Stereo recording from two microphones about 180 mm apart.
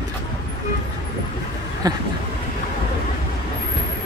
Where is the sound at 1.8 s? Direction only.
20° right (ahead or behind).